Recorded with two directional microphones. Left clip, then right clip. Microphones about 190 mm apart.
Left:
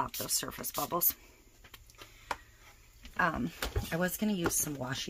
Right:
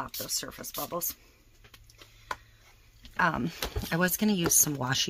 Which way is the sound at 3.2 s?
30° right (ahead or behind).